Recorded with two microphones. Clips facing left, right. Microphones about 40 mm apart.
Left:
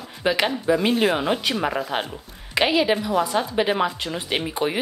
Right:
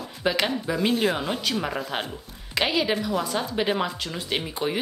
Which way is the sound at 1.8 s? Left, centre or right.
Centre.